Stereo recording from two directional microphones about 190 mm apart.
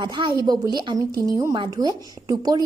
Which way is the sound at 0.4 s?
20° right (ahead or behind).